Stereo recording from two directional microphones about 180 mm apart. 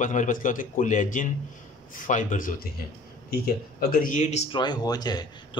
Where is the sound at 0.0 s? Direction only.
45° left (ahead or behind).